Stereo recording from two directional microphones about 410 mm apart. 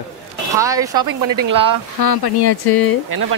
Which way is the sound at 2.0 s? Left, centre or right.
Left.